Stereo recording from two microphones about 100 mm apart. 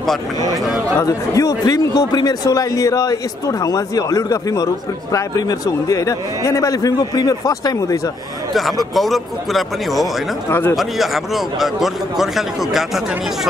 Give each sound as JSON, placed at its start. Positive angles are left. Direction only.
{"t": 0.9, "sound": "speech", "side_deg": 35}
{"t": 8.9, "sound": "a man's voice", "side_deg": 0}
{"t": 10.5, "sound": "speech", "side_deg": 20}
{"t": 10.8, "sound": "a man's voice", "side_deg": 0}